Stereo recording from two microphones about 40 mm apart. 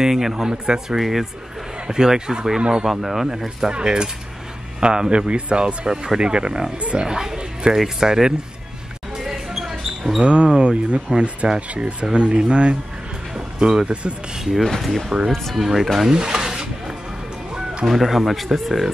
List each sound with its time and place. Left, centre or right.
0.0 s speech: centre
0.9 s speech: centre
1.9 s speech: centre
2.9 s speech: centre
3.7 s speech: centre
7.1 s music: centre
8.0 s speech: centre
9.1 s basketball bounce: centre
10.2 s speech: right
14.6 s speech: centre
16.1 s a sound: centre
17.8 s speech: centre